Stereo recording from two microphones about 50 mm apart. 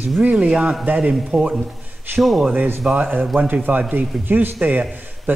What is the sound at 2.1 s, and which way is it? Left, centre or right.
Speech, right.